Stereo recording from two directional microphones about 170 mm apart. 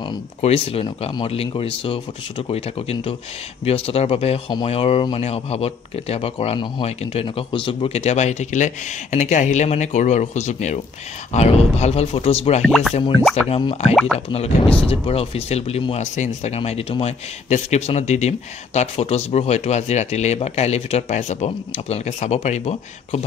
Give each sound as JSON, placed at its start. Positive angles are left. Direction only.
{"t": 0.4, "sound": "speech", "side_deg": 35}
{"t": 12.6, "sound": "speech", "side_deg": 0}
{"t": 13.5, "sound": "speech", "side_deg": 35}